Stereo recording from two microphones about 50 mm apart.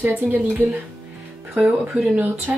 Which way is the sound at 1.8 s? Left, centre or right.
Right.